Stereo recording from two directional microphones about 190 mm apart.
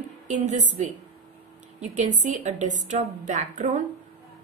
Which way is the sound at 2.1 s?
40° right (ahead or behind).